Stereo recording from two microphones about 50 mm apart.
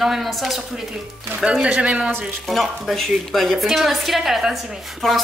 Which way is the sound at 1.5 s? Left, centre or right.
Right.